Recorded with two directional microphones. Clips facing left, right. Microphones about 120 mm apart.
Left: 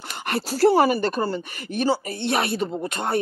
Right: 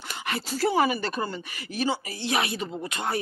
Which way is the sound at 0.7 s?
40° left (ahead or behind).